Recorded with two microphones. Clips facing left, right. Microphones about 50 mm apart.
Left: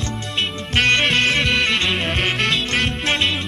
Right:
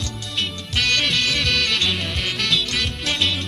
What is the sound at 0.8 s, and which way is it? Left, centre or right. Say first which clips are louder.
Music: left 5 dB; left.